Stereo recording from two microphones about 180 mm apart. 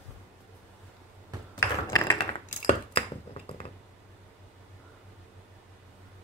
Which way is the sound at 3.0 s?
30° left (ahead or behind).